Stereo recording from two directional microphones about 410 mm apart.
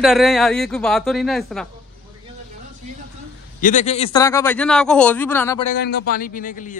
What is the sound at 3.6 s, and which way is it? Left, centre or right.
A man's voice, centre.